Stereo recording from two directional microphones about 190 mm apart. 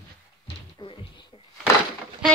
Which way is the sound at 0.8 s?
25° left (ahead or behind).